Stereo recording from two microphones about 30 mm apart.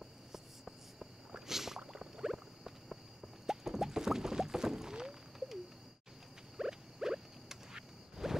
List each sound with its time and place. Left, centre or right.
0.3 s cricket: centre
1.5 s boat: centre
1.9 s rowboat: right
4.9 s a sound: centre
6.5 s rodents: centre